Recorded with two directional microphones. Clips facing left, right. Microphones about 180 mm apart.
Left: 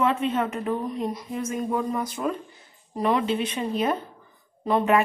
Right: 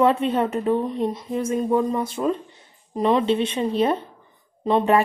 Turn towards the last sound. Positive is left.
turn(degrees=-20)  # may be behind; listen again after turning